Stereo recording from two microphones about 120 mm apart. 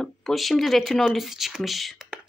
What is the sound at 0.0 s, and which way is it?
Speech, centre (ahead or behind).